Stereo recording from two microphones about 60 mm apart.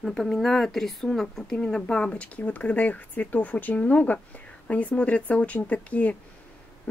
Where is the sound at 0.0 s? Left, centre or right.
Centre.